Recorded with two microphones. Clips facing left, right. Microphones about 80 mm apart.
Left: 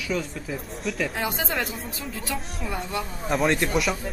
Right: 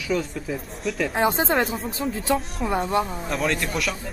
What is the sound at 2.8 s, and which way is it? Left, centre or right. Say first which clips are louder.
Speech: right 8 dB; right.